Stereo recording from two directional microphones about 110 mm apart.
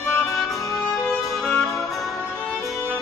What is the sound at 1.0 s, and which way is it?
Music, 5° left (ahead or behind).